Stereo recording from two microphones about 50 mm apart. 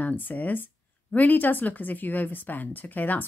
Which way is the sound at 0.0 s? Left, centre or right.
Left.